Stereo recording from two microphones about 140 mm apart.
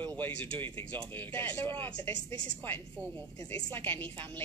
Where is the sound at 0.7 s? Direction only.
35° right (ahead or behind).